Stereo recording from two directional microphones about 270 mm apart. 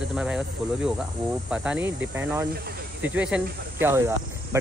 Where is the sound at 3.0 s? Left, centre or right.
Centre.